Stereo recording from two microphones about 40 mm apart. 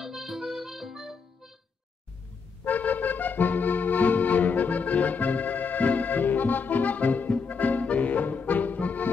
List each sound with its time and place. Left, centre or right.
0.0 s music: centre
2.6 s accordion: left